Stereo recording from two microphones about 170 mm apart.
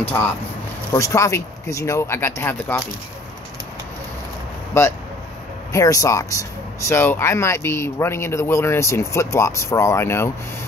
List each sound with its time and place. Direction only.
0.0 s speech: 10° left (ahead or behind)
4.7 s speech: 15° left (ahead or behind)